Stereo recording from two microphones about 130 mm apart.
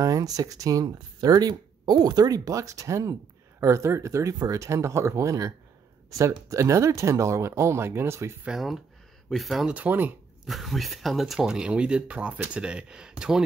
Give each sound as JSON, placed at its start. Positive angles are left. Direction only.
{"t": 0.0, "sound": "speech", "side_deg": -25}
{"t": 8.5, "sound": "speech", "side_deg": 0}
{"t": 10.5, "sound": "speech", "side_deg": 0}